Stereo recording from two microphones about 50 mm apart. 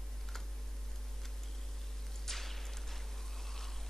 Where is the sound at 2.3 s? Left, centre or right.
Centre.